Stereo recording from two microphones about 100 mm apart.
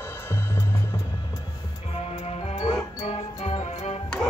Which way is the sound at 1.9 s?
90° left.